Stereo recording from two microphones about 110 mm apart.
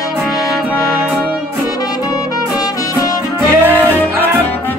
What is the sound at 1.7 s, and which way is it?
Music, 35° left (ahead or behind).